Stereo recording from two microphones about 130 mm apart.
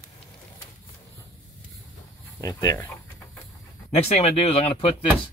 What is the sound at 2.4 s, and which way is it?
Speech, 25° left (ahead or behind).